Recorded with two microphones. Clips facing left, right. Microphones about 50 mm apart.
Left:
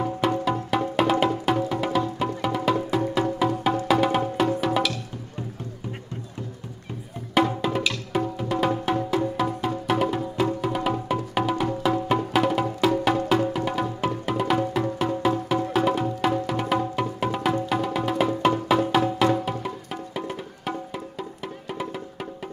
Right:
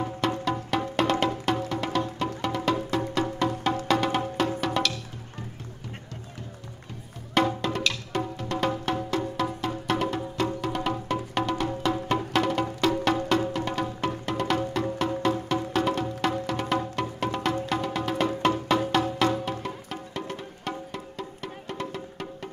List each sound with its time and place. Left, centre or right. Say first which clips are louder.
0.0 s music: left 4 dB; centre
7.3 s music: left 3 dB; centre